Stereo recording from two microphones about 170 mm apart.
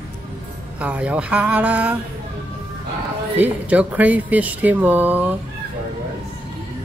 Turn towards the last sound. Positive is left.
turn(degrees=-10)  # may be behind; listen again after turning